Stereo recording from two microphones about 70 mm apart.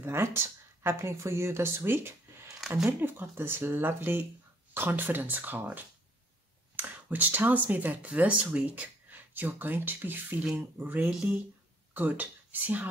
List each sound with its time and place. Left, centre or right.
0.0 s speech: right
2.6 s a sound: centre
3.0 s speech: right
6.8 s speech: right